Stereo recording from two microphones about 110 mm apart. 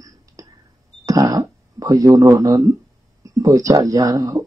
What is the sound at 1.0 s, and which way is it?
Speech, 35° right (ahead or behind).